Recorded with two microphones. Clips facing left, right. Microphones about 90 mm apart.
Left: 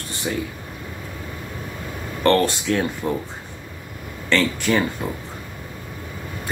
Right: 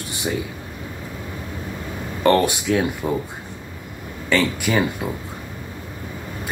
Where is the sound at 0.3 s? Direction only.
15° right (ahead or behind).